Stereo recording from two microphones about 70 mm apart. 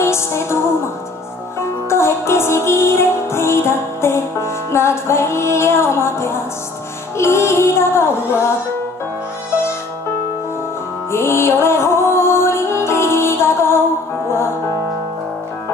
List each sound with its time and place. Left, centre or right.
0.0 s music: left
11.1 s music: left